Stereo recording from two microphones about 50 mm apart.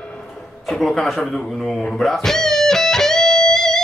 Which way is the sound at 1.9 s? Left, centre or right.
Centre.